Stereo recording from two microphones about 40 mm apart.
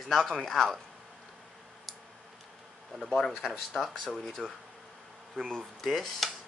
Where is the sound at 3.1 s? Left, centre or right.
Centre.